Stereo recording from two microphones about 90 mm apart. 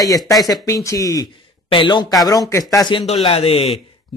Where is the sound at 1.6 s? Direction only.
65° left (ahead or behind).